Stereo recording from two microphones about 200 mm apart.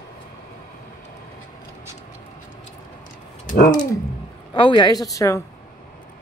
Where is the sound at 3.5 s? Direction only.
40° left (ahead or behind).